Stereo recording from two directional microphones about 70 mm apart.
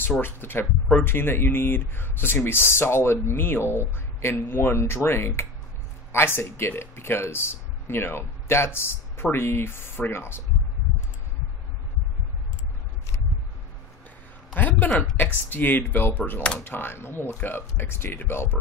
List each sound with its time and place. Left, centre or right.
0.2 s speech: left
14.5 s a sound: left
15.5 s speech: left